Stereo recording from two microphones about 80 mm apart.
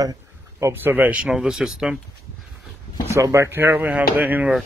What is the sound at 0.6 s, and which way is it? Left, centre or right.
Speech, right.